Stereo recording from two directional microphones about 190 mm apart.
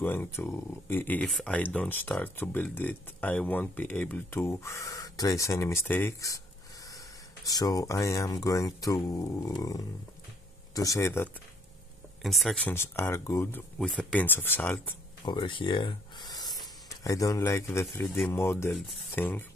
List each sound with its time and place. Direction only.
0.0 s speech: 10° left (ahead or behind)
7.4 s speech: 20° left (ahead or behind)
12.2 s speech: centre (ahead or behind)
12.7 s speech: 15° left (ahead or behind)
15.2 s a sound: 25° left (ahead or behind)
17.0 s speech: 20° left (ahead or behind)